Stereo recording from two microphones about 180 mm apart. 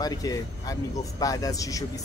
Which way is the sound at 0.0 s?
20° left (ahead or behind).